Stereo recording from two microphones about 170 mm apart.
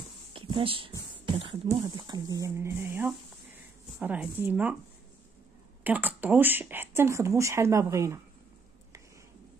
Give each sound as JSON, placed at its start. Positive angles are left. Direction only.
{"t": 0.3, "sound": "a sound", "side_deg": -30}
{"t": 1.2, "sound": "speech", "side_deg": -30}
{"t": 5.9, "sound": "speech", "side_deg": -10}